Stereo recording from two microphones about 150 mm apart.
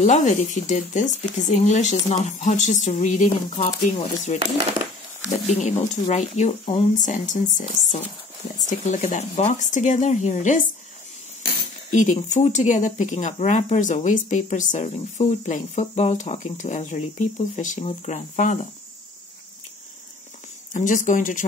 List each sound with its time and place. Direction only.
0.0 s speech: 55° left (ahead or behind)
5.5 s speech: 50° left (ahead or behind)
11.9 s speech: 55° left (ahead or behind)
20.7 s speech: 60° left (ahead or behind)